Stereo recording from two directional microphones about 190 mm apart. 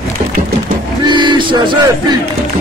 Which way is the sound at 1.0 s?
25° right (ahead or behind).